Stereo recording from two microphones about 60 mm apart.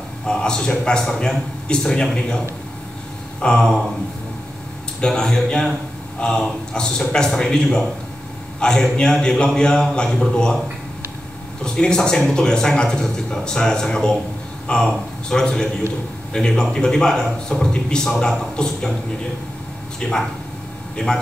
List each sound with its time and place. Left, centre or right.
0.3 s a man's voice: centre
3.3 s a man's voice: centre
5.0 s a man's voice: centre
11.6 s a man's voice: centre
20.0 s a man's voice: centre